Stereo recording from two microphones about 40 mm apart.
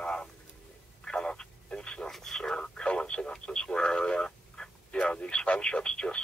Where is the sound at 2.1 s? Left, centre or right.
Centre.